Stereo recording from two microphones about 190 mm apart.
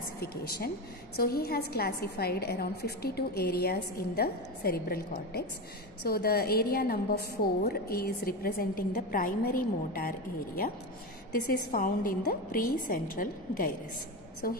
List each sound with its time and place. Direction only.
0.2 s a woman's voice: 55° left (ahead or behind)
11.7 s a woman's voice: 50° left (ahead or behind)